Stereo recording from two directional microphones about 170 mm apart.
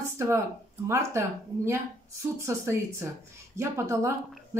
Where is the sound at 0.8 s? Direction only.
15° right (ahead or behind).